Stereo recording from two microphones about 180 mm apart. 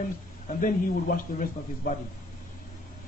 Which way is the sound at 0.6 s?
50° left (ahead or behind).